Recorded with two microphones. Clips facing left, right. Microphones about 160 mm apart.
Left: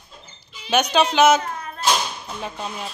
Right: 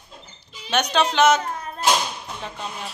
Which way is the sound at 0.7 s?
5° left (ahead or behind).